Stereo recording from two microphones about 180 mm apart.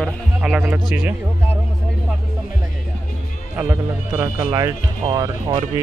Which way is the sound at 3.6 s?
15° right (ahead or behind).